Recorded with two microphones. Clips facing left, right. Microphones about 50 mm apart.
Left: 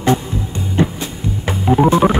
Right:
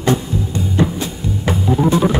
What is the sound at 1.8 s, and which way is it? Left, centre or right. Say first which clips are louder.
Organ: left 4 dB; left.